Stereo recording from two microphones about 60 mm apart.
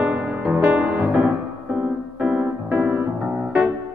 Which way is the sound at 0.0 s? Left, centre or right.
Right.